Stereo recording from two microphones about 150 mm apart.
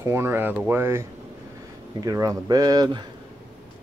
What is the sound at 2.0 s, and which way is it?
Speech, 25° right (ahead or behind).